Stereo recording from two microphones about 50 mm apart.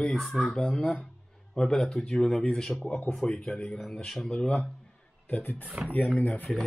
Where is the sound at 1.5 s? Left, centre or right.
Centre.